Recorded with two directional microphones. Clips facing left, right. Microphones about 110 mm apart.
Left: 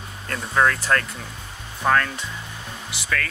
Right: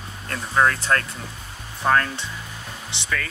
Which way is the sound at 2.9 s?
25° right (ahead or behind).